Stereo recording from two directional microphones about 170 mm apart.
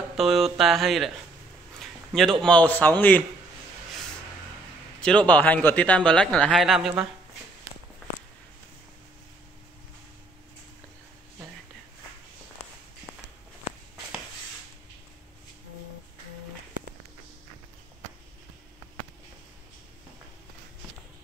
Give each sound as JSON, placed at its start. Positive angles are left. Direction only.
{"t": 0.1, "sound": "speech", "side_deg": 0}
{"t": 1.8, "sound": "a sound", "side_deg": 0}
{"t": 2.4, "sound": "speech", "side_deg": 5}
{"t": 5.0, "sound": "speech", "side_deg": 5}
{"t": 12.6, "sound": "walk", "side_deg": 40}
{"t": 13.7, "sound": "a sound", "side_deg": 40}